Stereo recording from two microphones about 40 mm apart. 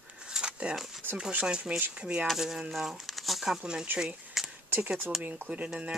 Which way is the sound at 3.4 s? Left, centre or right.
Right.